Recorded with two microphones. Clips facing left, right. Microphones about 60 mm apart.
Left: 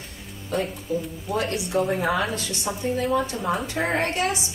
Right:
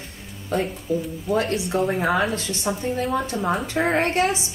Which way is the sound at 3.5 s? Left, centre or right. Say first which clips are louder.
Right 5 dB; centre.